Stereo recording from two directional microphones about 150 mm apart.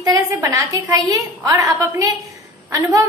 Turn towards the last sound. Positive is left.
turn(degrees=-25)  # may be behind; listen again after turning